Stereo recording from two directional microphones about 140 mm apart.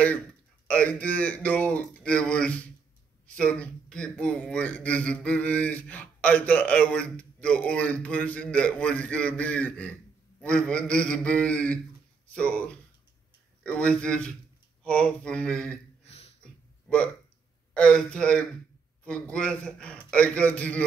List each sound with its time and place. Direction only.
0.7 s a man's voice: 10° left (ahead or behind)
16.1 s a sound: 50° left (ahead or behind)
16.3 s throat clearing: 10° left (ahead or behind)
17.7 s a man's voice: 5° left (ahead or behind)